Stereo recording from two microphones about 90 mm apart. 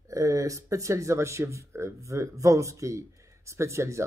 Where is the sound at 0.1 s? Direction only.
35° right (ahead or behind).